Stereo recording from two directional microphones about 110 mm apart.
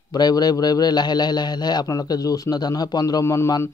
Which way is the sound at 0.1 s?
35° left (ahead or behind).